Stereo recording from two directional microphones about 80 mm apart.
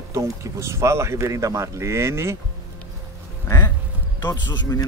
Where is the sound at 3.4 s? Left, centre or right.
Left.